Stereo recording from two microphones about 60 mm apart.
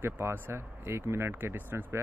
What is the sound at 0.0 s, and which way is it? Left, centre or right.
Speech, right.